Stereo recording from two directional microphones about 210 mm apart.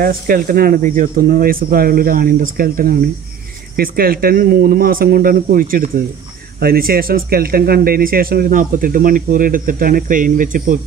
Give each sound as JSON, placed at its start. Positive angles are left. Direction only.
{"t": 0.0, "sound": "speech", "side_deg": -45}